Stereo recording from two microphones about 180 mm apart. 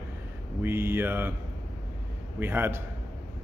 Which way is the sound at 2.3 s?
10° right (ahead or behind).